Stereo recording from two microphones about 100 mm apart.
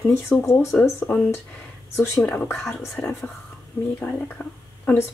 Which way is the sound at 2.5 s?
Centre (ahead or behind).